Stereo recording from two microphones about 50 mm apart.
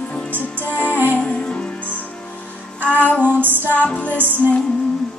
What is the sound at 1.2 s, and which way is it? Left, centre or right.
Music, centre.